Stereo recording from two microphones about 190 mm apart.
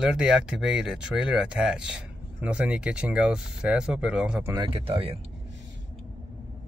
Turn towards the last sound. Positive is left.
turn(degrees=-30)  # may be behind; listen again after turning